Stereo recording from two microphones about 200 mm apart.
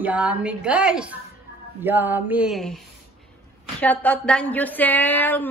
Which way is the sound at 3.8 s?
5° left (ahead or behind).